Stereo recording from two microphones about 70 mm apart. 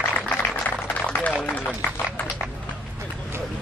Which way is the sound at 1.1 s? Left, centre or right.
Left.